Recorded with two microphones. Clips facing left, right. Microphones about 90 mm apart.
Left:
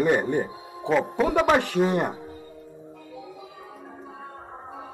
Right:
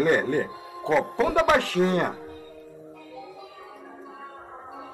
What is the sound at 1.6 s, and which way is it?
Speech, 15° left (ahead or behind).